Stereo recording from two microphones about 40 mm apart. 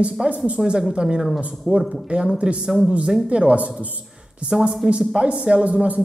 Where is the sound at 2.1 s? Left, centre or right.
Right.